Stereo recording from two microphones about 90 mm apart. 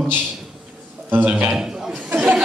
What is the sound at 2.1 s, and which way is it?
Chuckle, 5° right (ahead or behind).